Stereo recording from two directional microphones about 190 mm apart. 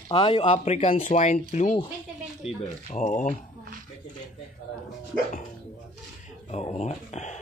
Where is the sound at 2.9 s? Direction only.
40° left (ahead or behind).